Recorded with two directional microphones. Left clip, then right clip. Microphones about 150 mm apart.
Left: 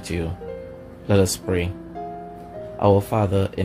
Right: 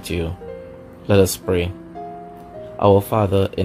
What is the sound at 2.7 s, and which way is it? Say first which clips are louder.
Speech: right 4 dB; 35° right (ahead or behind).